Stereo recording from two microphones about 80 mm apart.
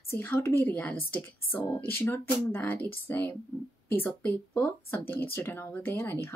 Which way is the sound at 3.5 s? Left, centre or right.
Left.